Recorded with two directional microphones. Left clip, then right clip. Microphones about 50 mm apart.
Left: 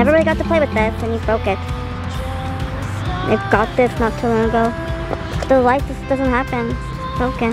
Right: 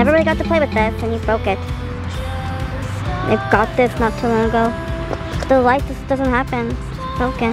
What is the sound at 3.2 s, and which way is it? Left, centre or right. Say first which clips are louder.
Speech: right 1 dB; centre.